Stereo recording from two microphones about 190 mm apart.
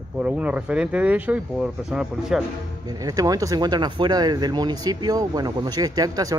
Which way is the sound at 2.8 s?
20° right (ahead or behind).